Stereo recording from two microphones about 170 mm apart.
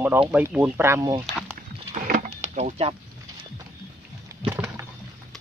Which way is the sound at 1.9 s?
45° right (ahead or behind).